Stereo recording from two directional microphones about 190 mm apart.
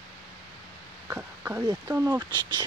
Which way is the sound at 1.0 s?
10° right (ahead or behind).